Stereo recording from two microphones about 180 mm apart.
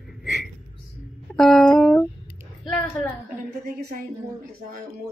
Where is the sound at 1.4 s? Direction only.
Centre (ahead or behind).